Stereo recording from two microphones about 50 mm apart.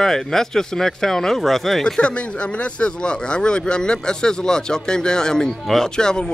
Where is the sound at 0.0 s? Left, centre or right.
Centre.